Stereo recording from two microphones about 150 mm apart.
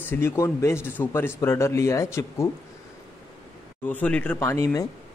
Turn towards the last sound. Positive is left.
turn(degrees=20)  # may be behind; listen again after turning